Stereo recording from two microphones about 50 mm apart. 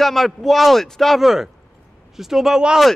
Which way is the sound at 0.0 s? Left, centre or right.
Centre.